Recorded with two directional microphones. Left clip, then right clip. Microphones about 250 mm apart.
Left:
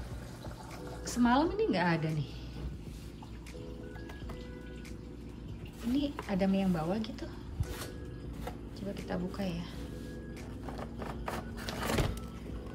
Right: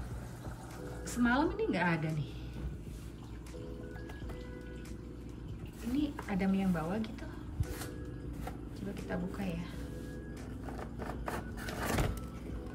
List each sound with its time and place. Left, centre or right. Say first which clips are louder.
1.0 s a woman's voice: left 3 dB; centre
5.9 s a woman's voice: left 2 dB; centre
9.1 s a woman's voice: left 2 dB; centre
10.7 s a sound: left 1 dB; centre